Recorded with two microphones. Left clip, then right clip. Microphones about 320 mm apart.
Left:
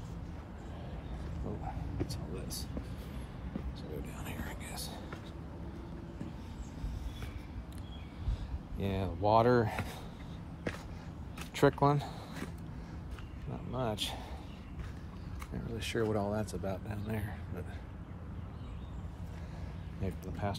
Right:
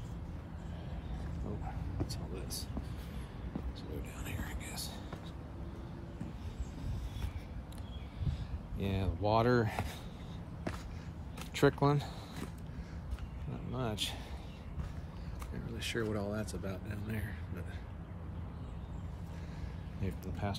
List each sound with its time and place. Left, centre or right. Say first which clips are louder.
2.0 s speech: left 1 dB; centre
4.2 s a sound: left 1 dB; centre
8.3 s speech: right 1 dB; centre
11.3 s speech: left 2 dB; centre
13.7 s speech: left 2 dB; centre
15.8 s speech: left 3 dB; centre
20.0 s speech: left 2 dB; centre